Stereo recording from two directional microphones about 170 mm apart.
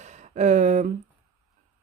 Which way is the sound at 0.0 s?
45° right (ahead or behind).